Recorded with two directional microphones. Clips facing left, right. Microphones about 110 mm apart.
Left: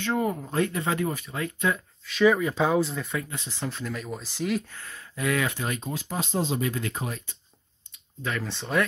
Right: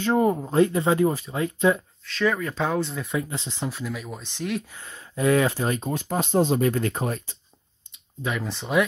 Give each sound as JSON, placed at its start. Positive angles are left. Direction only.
{"t": 0.0, "sound": "speech", "side_deg": -30}
{"t": 2.0, "sound": "speech", "side_deg": 10}
{"t": 3.1, "sound": "speech", "side_deg": -25}
{"t": 3.6, "sound": "speech", "side_deg": -5}
{"t": 4.6, "sound": "speech", "side_deg": -20}
{"t": 5.8, "sound": "speech", "side_deg": -50}
{"t": 8.2, "sound": "speech", "side_deg": -15}